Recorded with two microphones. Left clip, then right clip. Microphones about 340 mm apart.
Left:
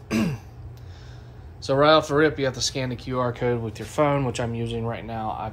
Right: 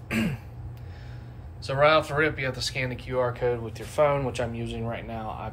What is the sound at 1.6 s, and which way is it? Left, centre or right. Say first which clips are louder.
Speech: left 3 dB; centre.